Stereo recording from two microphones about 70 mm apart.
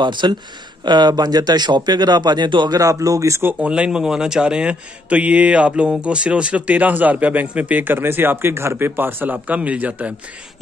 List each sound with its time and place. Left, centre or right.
0.0 s speech: right
2.8 s speech: right
3.5 s speech: centre